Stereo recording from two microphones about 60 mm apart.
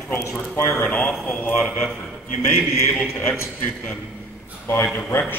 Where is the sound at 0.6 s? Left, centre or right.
Left.